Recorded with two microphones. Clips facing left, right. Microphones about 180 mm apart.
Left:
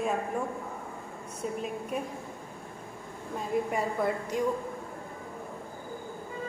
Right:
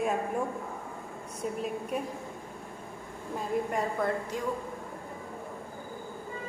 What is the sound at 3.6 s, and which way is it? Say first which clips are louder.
Speech: left 1 dB; 5° left (ahead or behind).